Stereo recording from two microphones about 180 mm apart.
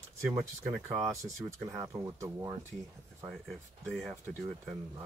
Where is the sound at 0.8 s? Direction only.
15° right (ahead or behind).